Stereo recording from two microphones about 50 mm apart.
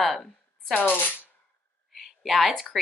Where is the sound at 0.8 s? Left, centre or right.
Left.